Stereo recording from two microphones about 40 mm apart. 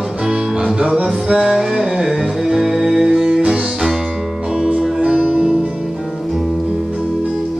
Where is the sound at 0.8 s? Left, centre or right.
Right.